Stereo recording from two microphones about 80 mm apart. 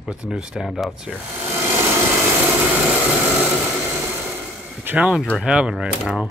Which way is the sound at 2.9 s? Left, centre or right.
Centre.